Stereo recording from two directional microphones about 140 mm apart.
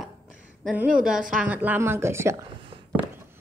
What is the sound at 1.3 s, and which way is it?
A woman's voice, 10° right (ahead or behind).